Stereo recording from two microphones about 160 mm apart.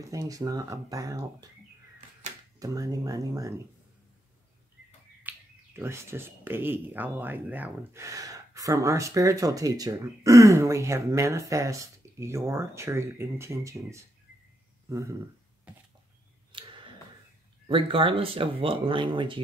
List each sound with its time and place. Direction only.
0.1 s speech: 20° right (ahead or behind)
2.6 s speech: 20° right (ahead or behind)
5.2 s speech: 15° right (ahead or behind)
15.7 s a sound: 10° right (ahead or behind)
16.5 s tick: 30° right (ahead or behind)
17.6 s speech: 35° right (ahead or behind)